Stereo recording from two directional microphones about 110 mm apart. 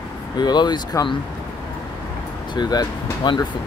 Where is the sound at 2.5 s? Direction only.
40° left (ahead or behind).